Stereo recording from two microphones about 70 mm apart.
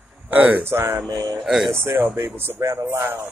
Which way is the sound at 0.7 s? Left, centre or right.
Right.